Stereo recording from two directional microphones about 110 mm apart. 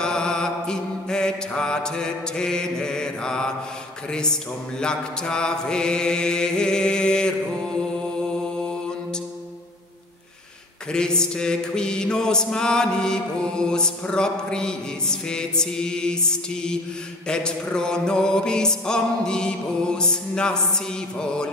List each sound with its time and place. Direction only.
0.0 s mantra: 5° left (ahead or behind)
10.9 s mantra: 5° left (ahead or behind)